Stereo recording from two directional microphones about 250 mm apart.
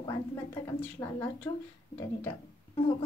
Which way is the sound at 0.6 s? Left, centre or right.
Centre.